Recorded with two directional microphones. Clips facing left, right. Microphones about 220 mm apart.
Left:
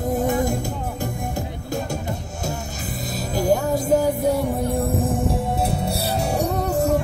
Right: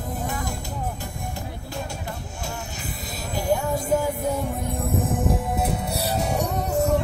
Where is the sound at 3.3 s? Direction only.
40° left (ahead or behind).